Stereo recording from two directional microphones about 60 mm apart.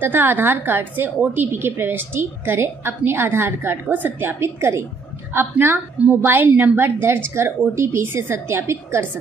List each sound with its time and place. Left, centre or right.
0.0 s a woman's voice: right
4.4 s a woman's voice: right